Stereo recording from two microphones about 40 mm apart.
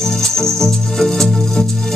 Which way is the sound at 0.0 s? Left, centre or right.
Centre.